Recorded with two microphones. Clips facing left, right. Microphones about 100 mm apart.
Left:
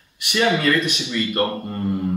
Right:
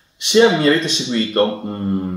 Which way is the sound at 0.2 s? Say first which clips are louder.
Right 7 dB; 25° right (ahead or behind).